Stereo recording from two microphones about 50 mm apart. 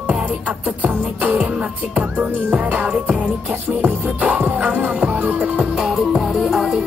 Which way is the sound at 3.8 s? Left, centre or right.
Right.